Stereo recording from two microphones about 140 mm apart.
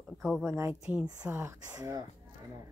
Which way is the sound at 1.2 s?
15° right (ahead or behind).